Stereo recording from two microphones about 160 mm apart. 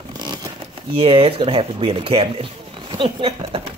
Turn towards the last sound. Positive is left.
turn(degrees=-35)  # may be behind; listen again after turning